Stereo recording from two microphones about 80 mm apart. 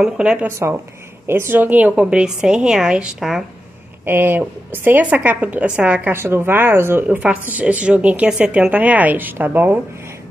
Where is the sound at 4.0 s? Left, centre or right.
Right.